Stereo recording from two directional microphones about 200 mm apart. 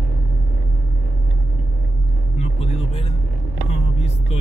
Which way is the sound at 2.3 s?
30° left (ahead or behind).